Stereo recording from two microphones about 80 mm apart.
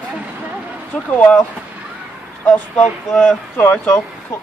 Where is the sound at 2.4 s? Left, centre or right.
Centre.